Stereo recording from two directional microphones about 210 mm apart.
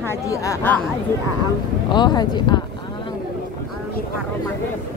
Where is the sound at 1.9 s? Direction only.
20° left (ahead or behind).